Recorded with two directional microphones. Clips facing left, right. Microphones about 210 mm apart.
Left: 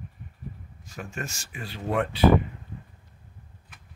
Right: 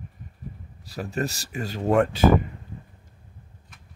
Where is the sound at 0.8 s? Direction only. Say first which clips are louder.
Right 8 dB; 35° right (ahead or behind).